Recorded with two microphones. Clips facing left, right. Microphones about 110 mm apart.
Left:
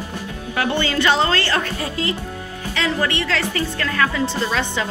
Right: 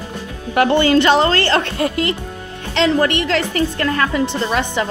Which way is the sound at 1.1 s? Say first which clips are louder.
Right 4 dB; 55° right (ahead or behind).